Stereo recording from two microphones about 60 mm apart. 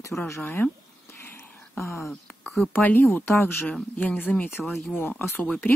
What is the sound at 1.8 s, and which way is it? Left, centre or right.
Speech, left.